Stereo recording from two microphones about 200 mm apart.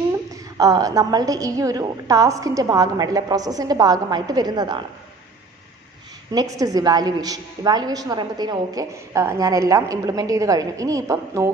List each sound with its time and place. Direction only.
0.6 s a woman's voice: 20° right (ahead or behind)
6.3 s a woman's voice: 15° right (ahead or behind)